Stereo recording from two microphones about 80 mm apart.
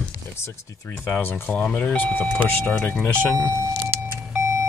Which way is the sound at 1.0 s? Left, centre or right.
Left.